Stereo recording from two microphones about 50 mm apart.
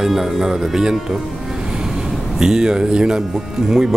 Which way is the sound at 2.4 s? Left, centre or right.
Centre.